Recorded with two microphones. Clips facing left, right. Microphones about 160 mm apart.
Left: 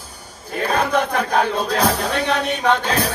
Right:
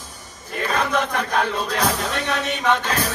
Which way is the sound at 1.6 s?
35° left (ahead or behind).